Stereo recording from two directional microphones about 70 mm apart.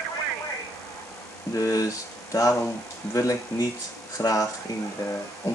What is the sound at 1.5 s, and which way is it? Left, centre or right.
Speech, left.